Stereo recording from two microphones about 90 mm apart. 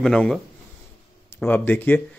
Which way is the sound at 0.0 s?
5° left (ahead or behind).